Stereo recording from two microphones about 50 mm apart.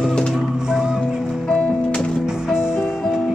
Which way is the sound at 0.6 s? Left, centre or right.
Centre.